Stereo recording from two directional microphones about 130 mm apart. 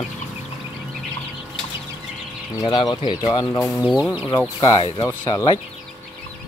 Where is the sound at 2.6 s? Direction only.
30° left (ahead or behind).